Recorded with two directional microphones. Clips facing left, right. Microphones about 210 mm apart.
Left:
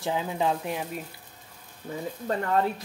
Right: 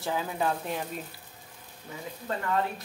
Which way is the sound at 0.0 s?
20° left (ahead or behind).